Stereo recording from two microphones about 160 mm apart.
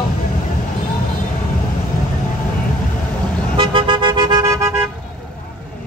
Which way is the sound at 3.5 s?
30° right (ahead or behind).